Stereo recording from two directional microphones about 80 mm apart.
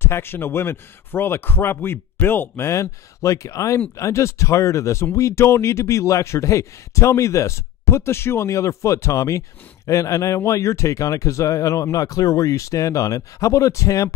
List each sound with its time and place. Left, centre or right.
0.0 s speech: left